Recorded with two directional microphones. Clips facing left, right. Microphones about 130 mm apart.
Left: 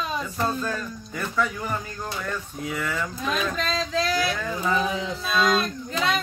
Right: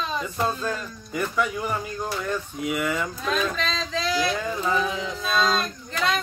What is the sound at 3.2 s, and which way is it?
A child's voice, 5° left (ahead or behind).